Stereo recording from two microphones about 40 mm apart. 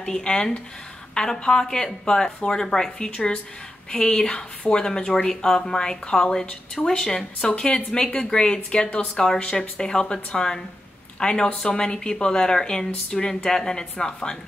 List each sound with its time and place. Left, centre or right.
0.0 s a woman's voice: centre
9.0 s a woman's voice: centre